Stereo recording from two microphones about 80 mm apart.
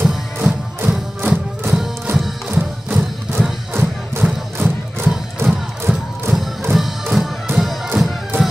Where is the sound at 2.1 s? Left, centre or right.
Right.